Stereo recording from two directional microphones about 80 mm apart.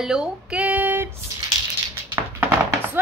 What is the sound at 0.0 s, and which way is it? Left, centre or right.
Speech, centre.